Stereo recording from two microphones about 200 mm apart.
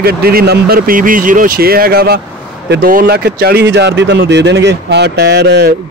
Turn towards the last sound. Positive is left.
turn(degrees=-55)  # may be behind; listen again after turning